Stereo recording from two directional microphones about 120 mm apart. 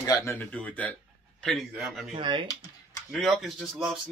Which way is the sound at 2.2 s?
45° right (ahead or behind).